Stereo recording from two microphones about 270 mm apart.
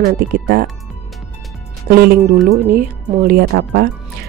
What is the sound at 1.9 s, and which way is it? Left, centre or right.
Speech, right.